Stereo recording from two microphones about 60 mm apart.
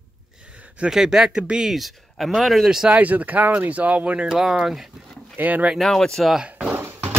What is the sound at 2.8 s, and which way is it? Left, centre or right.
Speech, right.